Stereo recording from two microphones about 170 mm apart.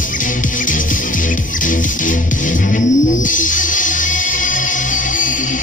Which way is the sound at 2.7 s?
50° left (ahead or behind).